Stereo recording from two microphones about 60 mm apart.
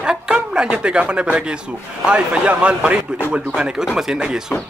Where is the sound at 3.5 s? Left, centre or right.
Centre.